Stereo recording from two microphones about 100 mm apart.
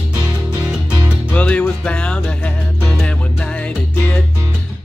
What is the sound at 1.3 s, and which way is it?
Music, 15° left (ahead or behind).